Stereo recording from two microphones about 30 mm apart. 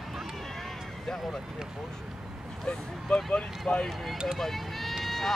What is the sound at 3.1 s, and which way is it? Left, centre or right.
Speech, left.